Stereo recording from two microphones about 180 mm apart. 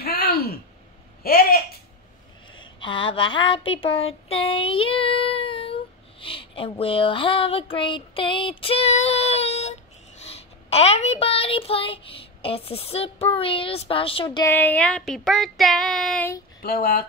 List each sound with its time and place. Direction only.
0.0 s a sound: 60° left (ahead or behind)
2.5 s a sound: 25° left (ahead or behind)
4.1 s child singing: 30° left (ahead or behind)
10.2 s speech: 35° left (ahead or behind)
14.5 s child singing: 10° left (ahead or behind)
16.6 s speech: 55° left (ahead or behind)